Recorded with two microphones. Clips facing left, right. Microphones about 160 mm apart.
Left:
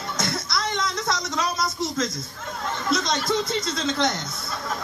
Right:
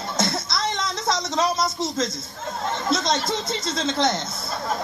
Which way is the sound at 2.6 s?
25° right (ahead or behind).